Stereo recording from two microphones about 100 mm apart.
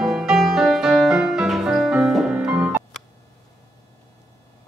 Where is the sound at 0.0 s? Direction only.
5° right (ahead or behind).